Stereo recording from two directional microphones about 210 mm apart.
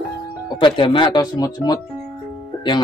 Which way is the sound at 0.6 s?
25° left (ahead or behind).